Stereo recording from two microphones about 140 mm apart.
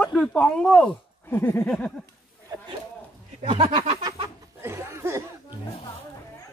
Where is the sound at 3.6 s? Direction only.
40° right (ahead or behind).